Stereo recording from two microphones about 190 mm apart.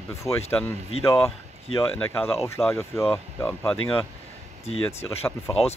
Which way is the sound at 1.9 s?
10° left (ahead or behind).